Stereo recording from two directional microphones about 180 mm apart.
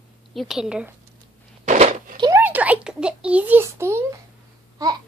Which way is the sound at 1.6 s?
40° right (ahead or behind).